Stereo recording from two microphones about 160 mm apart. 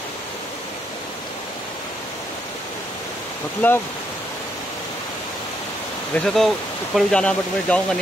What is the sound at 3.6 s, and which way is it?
Speech, 15° left (ahead or behind).